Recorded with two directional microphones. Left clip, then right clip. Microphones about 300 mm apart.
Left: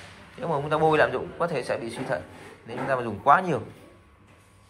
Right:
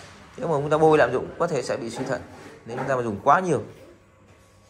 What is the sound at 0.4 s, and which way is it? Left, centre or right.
Speech, centre.